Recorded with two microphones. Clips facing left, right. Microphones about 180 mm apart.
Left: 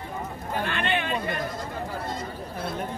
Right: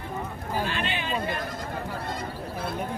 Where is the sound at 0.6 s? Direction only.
60° left (ahead or behind).